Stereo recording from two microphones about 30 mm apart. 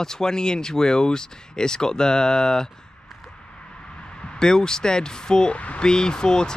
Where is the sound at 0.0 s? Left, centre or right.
Left.